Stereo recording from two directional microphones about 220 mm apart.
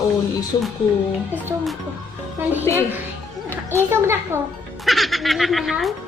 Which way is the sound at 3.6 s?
10° right (ahead or behind).